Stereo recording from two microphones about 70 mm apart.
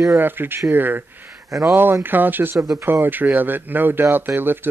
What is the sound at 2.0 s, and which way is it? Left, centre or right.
Speech, right.